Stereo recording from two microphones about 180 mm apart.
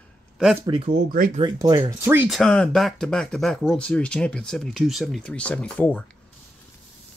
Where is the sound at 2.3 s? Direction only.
Centre (ahead or behind).